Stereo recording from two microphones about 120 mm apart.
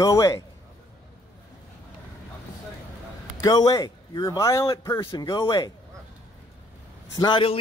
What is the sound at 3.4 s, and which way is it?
Speech, 30° left (ahead or behind).